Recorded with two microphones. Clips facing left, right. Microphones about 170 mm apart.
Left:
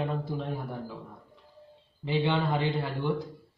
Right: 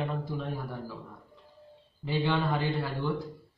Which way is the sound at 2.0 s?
20° left (ahead or behind).